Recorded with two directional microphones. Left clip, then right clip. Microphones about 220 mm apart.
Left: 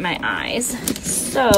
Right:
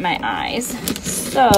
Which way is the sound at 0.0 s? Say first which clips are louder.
Right 2 dB; centre (ahead or behind).